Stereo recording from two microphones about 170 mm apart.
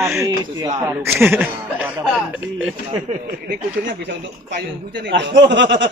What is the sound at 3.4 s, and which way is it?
A man's voice, 90° right.